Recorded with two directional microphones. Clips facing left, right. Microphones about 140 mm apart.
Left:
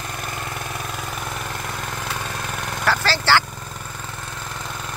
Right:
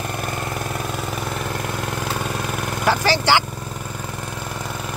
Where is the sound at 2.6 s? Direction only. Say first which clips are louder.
Right 2 dB; 15° right (ahead or behind).